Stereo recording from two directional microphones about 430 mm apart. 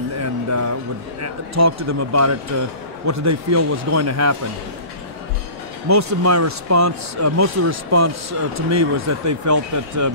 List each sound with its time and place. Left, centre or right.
0.2 s a sound: right
1.2 s speech: right
5.9 s speech: right